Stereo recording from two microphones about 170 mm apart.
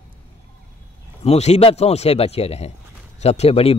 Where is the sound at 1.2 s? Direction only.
40° left (ahead or behind).